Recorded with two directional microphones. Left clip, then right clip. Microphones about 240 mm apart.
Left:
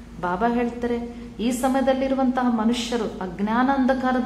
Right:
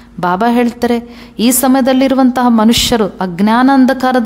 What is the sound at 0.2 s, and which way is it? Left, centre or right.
A woman's voice, right.